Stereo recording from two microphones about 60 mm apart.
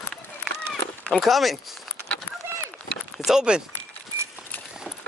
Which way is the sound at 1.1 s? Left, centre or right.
Centre.